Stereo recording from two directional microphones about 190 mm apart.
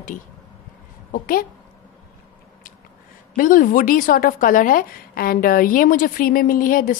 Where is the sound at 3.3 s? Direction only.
45° left (ahead or behind).